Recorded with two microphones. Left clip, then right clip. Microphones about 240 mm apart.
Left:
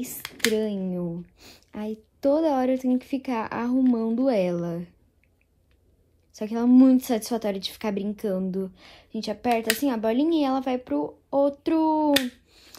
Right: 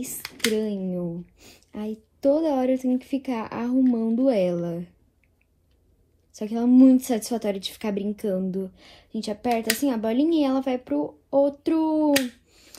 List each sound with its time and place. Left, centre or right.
0.5 s a woman's voice: left
6.3 s a woman's voice: left